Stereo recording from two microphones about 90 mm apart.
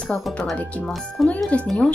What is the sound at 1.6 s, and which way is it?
Speech, 10° left (ahead or behind).